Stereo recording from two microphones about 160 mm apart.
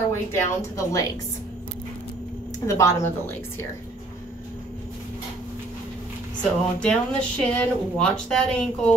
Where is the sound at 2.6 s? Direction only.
20° left (ahead or behind).